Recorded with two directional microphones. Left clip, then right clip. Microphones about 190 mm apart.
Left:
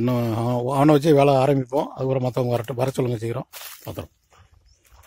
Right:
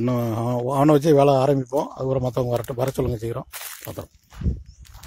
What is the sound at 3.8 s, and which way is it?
Speech, 15° left (ahead or behind).